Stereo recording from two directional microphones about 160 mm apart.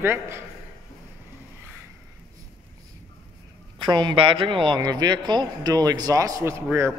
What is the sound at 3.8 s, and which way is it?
A man's voice, 30° right (ahead or behind).